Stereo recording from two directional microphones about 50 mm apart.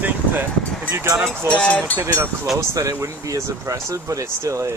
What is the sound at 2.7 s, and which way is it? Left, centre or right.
Speech, right.